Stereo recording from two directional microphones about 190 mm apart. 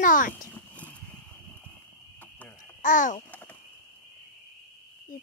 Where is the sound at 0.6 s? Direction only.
10° left (ahead or behind).